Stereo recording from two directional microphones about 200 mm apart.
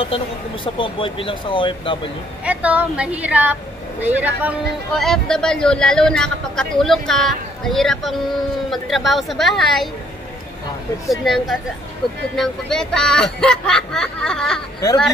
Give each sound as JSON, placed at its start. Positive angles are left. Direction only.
{"t": 0.7, "sound": "speech", "side_deg": 25}
{"t": 2.4, "sound": "a woman's voice", "side_deg": -10}
{"t": 11.1, "sound": "speech", "side_deg": 0}